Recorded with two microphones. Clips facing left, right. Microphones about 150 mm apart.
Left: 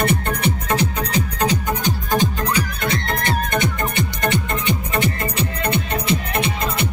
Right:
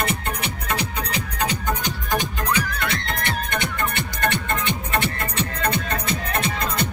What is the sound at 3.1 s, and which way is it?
Music, 45° left (ahead or behind).